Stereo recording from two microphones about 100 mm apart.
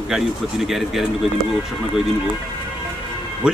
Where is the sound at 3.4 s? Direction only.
10° right (ahead or behind).